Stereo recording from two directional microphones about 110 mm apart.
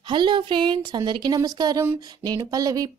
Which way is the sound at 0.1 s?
45° right (ahead or behind).